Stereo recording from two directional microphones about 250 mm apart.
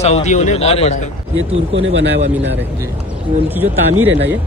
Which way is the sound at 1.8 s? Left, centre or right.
Right.